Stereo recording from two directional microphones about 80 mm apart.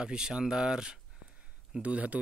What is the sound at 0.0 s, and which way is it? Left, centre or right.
Speech, centre.